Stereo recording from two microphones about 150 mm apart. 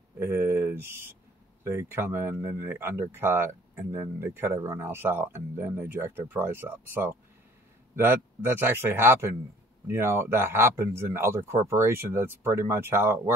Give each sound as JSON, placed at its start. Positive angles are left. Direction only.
{"t": 0.2, "sound": "speech", "side_deg": -15}